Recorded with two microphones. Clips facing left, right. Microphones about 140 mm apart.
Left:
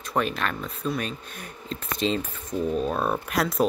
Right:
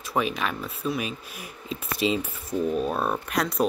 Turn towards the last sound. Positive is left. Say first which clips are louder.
# left 1 dB
turn(degrees=0)  # may be behind; listen again after turning